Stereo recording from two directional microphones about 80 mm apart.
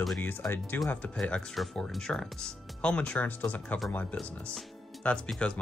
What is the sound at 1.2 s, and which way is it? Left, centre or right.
Speech, centre.